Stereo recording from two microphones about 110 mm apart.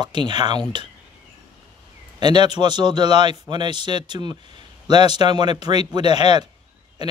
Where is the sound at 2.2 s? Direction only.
40° right (ahead or behind).